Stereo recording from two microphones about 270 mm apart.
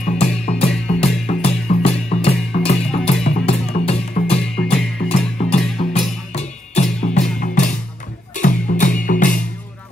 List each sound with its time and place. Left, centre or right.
0.0 s music: left